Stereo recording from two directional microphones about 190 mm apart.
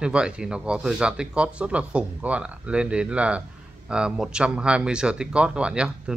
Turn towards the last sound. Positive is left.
turn(degrees=-5)  # may be behind; listen again after turning